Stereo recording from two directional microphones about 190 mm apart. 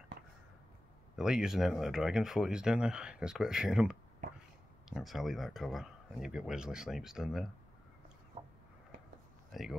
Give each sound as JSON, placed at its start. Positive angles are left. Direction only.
{"t": 1.1, "sound": "speech", "side_deg": -5}
{"t": 8.4, "sound": "a sound", "side_deg": -30}
{"t": 9.5, "sound": "speech", "side_deg": 0}